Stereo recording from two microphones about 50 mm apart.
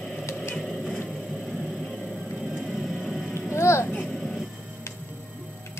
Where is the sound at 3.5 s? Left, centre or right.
Left.